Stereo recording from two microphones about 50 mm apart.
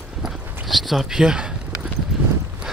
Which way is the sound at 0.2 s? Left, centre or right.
Centre.